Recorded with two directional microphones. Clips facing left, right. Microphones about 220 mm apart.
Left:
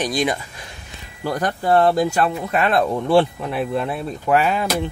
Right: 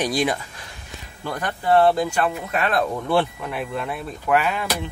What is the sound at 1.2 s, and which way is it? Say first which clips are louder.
Speech: left 3 dB; 40° left (ahead or behind).